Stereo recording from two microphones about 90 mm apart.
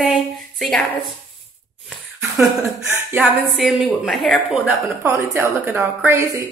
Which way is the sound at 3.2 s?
Centre (ahead or behind).